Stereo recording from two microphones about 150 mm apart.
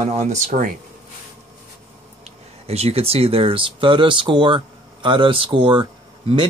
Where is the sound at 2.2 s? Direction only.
45° right (ahead or behind).